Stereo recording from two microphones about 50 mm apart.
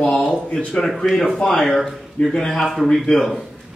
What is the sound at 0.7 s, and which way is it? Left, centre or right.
Speech, centre.